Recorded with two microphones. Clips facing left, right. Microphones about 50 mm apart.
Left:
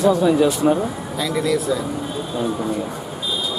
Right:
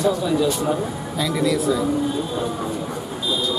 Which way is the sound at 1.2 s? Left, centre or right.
Centre.